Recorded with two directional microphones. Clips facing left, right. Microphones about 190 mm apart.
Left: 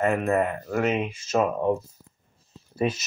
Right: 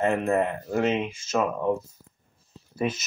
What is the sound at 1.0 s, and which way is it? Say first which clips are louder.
Speech: left 2 dB; 30° left (ahead or behind).